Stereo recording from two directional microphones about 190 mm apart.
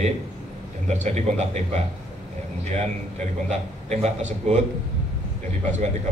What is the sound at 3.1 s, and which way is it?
A man's voice, 35° right (ahead or behind).